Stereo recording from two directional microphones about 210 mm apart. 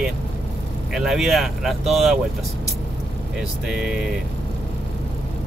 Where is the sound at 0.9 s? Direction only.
Centre (ahead or behind).